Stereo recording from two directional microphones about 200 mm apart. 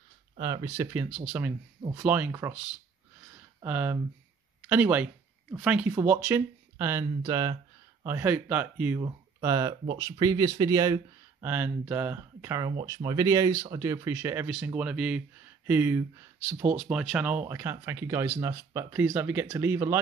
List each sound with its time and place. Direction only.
0.4 s speech: 20° right (ahead or behind)